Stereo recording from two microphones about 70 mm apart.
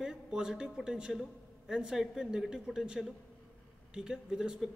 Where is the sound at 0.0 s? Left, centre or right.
Centre.